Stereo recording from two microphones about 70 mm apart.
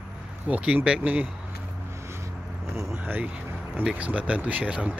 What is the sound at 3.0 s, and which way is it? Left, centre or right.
Speech, right.